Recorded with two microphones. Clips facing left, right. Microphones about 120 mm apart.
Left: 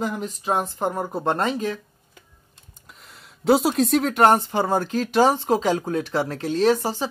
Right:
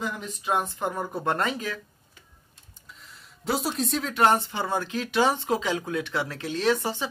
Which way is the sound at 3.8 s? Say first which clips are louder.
Left 6 dB; 60° left (ahead or behind).